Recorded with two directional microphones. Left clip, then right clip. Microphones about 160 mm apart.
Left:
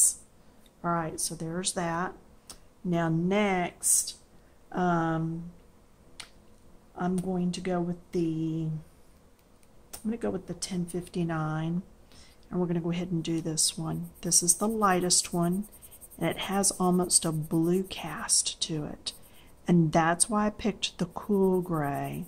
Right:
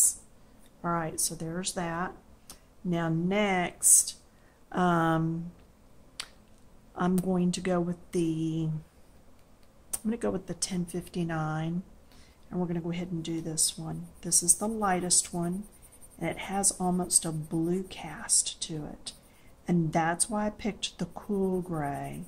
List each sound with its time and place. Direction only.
0.8 s speech: 10° left (ahead or behind)
3.8 s speech: centre (ahead or behind)
6.2 s finger snapping: 10° right (ahead or behind)
7.0 s speech: 10° right (ahead or behind)
9.8 s speech: centre (ahead or behind); by 22.2 s 30° left (ahead or behind)